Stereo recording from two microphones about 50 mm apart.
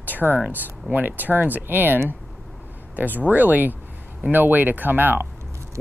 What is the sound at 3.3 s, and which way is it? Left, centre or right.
Speech, right.